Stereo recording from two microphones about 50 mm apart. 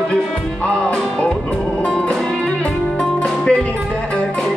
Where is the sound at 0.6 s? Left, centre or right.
Centre.